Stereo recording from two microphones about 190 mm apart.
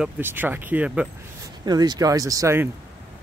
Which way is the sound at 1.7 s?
20° right (ahead or behind).